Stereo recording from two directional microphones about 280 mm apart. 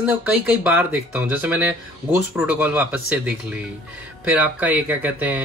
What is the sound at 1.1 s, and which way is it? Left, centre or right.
Speech, centre.